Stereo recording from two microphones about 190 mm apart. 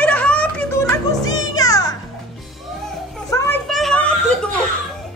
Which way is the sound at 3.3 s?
15° left (ahead or behind).